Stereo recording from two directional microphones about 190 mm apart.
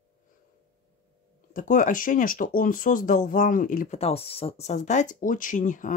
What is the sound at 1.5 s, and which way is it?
Speech, 45° left (ahead or behind).